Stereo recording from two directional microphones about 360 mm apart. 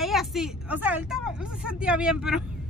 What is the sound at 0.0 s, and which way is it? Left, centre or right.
Speech, centre.